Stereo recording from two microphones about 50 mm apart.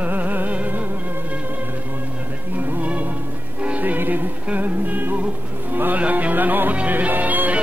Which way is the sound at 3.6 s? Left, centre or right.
Right.